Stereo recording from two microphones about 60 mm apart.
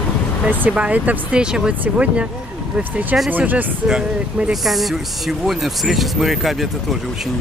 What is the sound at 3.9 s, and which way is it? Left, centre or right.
Speech, centre.